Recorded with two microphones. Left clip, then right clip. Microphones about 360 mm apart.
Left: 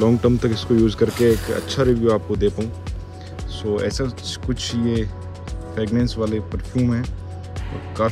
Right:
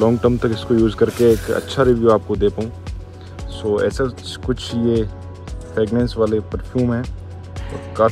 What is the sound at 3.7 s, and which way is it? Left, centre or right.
Speech, centre.